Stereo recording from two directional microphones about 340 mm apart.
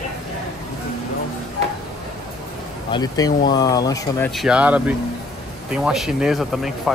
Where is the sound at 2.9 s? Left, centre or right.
Centre.